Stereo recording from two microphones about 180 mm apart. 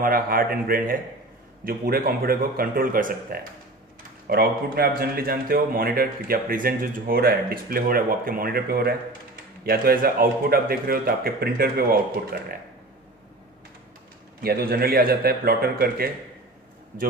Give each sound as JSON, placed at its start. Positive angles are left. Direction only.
{"t": 0.0, "sound": "a man's voice", "side_deg": -50}
{"t": 14.4, "sound": "a man's voice", "side_deg": -55}